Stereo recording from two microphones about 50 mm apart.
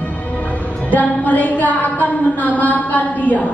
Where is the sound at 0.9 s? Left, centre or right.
Left.